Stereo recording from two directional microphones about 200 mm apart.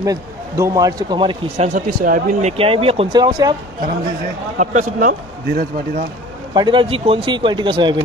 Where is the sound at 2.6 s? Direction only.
30° right (ahead or behind).